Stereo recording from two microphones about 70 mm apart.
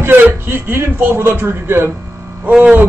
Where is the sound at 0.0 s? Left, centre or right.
Right.